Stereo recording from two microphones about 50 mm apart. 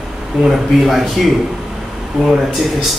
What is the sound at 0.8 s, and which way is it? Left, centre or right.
Speech, centre.